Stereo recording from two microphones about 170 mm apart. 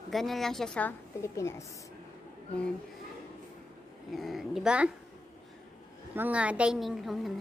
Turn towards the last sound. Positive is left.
turn(degrees=0)  # may be behind; listen again after turning